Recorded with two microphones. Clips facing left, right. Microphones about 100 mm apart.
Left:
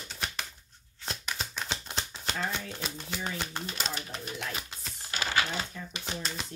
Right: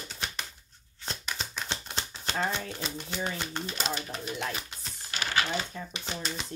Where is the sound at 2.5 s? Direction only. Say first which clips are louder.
Right 2 dB; 5° left (ahead or behind).